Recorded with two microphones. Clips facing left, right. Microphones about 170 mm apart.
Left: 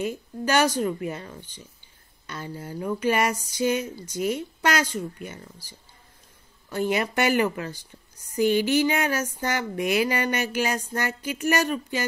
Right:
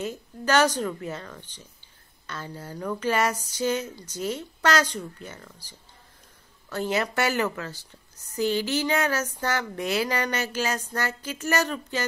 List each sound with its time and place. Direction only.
0.0 s speech: 10° left (ahead or behind)
6.7 s speech: 15° left (ahead or behind)